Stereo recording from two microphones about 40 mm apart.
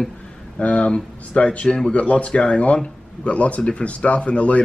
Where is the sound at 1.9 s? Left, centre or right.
Left.